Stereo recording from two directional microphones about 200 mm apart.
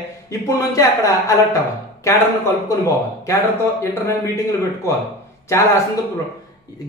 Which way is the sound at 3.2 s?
15° left (ahead or behind).